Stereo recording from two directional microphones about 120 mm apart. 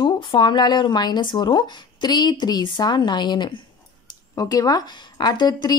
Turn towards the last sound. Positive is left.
turn(degrees=35)  # may be behind; listen again after turning